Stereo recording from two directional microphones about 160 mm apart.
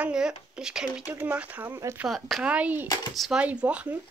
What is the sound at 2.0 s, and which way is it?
Speech, centre (ahead or behind).